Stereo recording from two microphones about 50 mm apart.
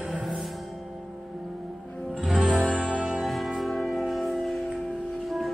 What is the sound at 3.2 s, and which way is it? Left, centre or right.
Music, centre.